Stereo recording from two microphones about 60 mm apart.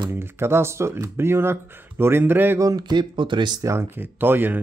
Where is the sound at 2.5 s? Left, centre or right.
Right.